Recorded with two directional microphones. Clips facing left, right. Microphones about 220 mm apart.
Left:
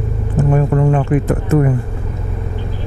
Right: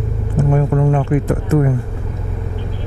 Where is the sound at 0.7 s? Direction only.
25° left (ahead or behind).